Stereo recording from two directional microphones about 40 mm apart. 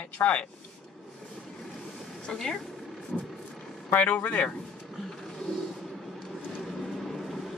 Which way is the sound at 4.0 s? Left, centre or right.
Left.